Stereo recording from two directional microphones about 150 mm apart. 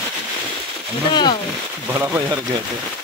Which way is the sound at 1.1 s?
30° left (ahead or behind).